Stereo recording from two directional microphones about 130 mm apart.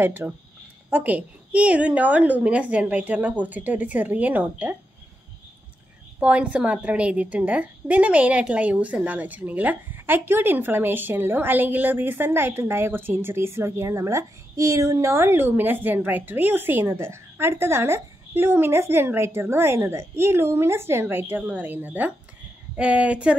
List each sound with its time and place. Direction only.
0.0 s a woman's voice: 15° right (ahead or behind)
6.1 s a woman's voice: 10° right (ahead or behind)